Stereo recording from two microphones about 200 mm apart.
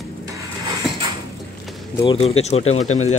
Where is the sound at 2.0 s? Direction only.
30° left (ahead or behind).